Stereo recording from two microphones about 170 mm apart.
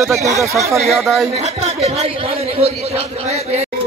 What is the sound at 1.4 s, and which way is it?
A man's voice, 40° right (ahead or behind).